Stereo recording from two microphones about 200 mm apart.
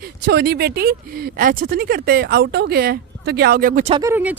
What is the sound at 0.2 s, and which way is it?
Speech, 50° right (ahead or behind).